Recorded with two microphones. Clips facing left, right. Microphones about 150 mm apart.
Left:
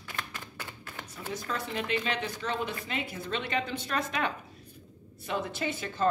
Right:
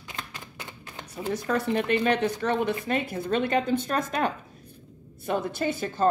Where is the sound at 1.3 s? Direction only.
60° right (ahead or behind).